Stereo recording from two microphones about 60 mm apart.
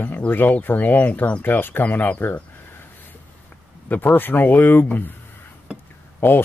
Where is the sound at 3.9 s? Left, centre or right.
Left.